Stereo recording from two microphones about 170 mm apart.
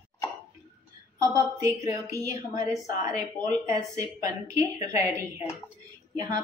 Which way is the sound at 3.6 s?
20° right (ahead or behind).